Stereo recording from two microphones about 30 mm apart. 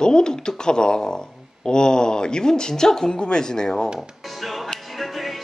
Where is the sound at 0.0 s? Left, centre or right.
Left.